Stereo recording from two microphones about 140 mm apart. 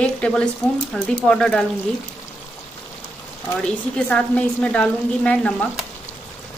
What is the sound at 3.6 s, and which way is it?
Speech, 10° left (ahead or behind).